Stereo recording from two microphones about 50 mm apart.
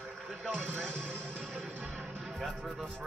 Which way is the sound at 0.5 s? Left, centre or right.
Right.